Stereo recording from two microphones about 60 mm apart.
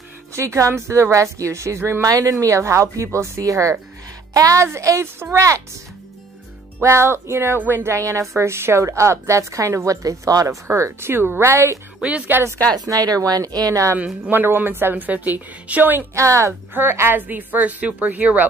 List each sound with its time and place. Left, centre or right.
0.3 s a woman's voice: right
2.0 s a woman's voice: right
2.4 s speech: right
4.3 s a woman's voice: right
4.7 s speech: right
5.0 s a woman's voice: right
6.8 s a woman's voice: right
12.0 s speech: centre
12.7 s a woman's voice: right
14.3 s a woman's voice: right
16.2 s speech: right
16.9 s a woman's voice: right
17.3 s speech: right